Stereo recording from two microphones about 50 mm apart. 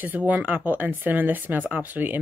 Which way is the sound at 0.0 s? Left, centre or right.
Right.